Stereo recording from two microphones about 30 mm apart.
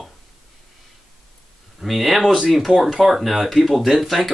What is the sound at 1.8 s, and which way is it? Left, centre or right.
A man's voice, centre.